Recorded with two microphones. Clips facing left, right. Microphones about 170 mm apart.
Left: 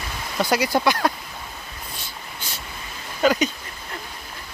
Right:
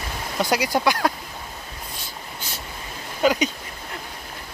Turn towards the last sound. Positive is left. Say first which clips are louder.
# left 1 dB
turn(degrees=-10)  # may be behind; listen again after turning